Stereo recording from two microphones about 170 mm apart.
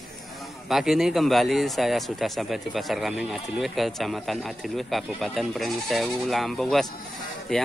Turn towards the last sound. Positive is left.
turn(degrees=0)  # may be behind; listen again after turning